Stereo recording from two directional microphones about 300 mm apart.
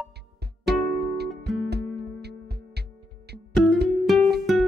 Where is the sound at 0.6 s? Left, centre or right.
Right.